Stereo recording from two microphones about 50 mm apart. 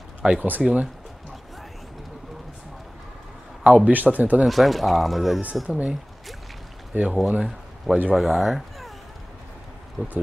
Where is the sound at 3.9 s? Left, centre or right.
Right.